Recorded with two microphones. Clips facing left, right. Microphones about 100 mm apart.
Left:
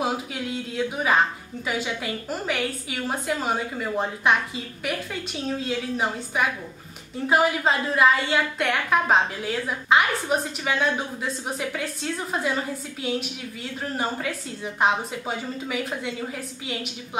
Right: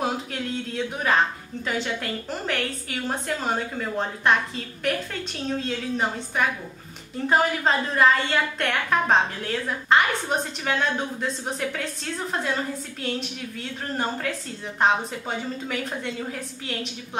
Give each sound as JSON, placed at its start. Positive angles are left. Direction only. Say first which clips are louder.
{"t": 0.0, "sound": "a woman's voice", "louder": "even", "side_deg": 5}
{"t": 14.8, "sound": "a woman's voice", "louder": "right 1 dB", "side_deg": 5}